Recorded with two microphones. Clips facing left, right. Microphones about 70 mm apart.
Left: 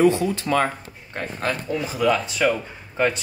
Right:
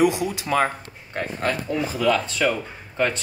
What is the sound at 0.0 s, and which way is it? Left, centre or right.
Speech, centre.